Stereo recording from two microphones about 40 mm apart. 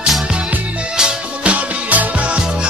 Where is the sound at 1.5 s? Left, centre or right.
Right.